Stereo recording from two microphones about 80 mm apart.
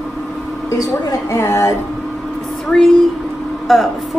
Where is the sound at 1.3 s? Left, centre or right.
Left.